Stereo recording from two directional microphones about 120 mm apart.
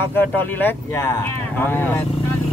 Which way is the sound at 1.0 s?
30° left (ahead or behind).